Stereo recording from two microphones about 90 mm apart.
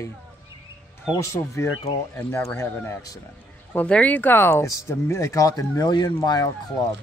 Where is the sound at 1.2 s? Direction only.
30° left (ahead or behind).